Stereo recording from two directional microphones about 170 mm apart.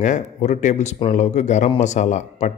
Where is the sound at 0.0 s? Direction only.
45° left (ahead or behind).